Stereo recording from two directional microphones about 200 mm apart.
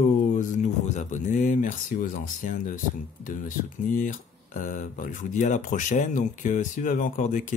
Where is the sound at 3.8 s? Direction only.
40° left (ahead or behind).